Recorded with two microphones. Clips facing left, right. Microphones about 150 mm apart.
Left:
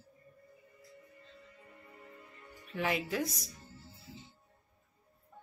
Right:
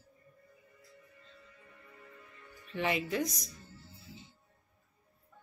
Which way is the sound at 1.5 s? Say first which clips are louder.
Left 2 dB; 30° left (ahead or behind).